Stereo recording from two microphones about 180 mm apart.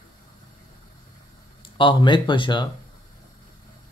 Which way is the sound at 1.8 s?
25° left (ahead or behind).